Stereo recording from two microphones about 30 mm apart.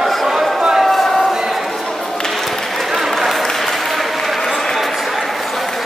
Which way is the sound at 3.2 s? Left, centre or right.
Centre.